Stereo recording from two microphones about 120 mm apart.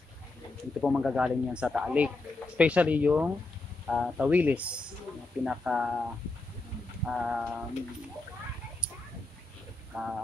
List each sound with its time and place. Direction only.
0.7 s speech: centre (ahead or behind)
7.1 s speech: 5° right (ahead or behind)
9.9 s speech: 20° right (ahead or behind)